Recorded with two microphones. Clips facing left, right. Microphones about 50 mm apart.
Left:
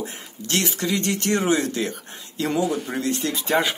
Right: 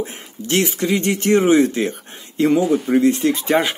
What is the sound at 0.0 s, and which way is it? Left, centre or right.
Speech, right.